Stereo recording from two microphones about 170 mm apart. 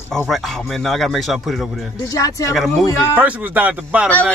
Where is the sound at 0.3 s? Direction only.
Centre (ahead or behind).